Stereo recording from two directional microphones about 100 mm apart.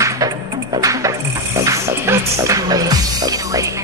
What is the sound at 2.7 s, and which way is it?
Music, 40° right (ahead or behind).